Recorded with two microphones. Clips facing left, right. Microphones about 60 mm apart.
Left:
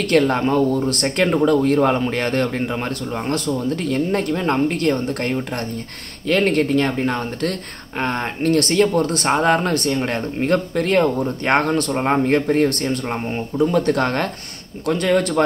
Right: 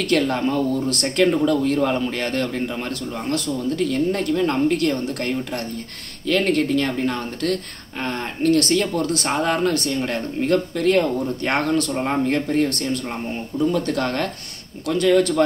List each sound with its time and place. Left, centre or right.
0.1 s speech: left
9.0 s speech: left